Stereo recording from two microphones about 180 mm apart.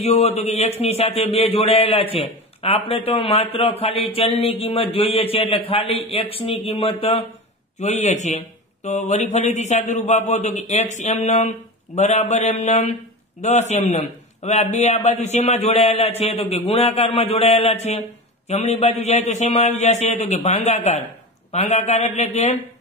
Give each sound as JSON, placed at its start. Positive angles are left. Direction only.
{"t": 0.0, "sound": "a man's voice", "side_deg": 35}